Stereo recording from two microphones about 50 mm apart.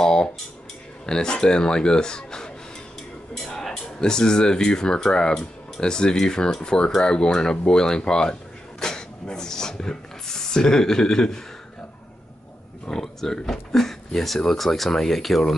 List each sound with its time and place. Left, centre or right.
0.0 s dishes: centre
1.0 s speech: centre
12.8 s a sound: centre
13.4 s speech: centre